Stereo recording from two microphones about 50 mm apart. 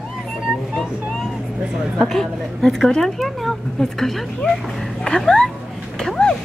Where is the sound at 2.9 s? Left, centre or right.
Centre.